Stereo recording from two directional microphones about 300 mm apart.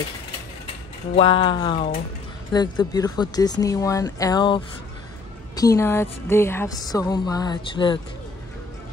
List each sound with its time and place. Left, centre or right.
1.1 s a woman's voice: centre
5.6 s a woman's voice: centre